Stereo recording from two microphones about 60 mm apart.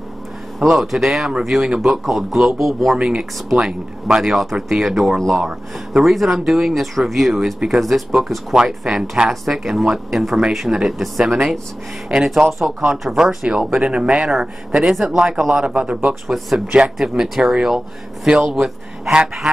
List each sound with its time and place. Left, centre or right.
0.6 s speech: centre
3.0 s speech: centre
16.3 s speech: centre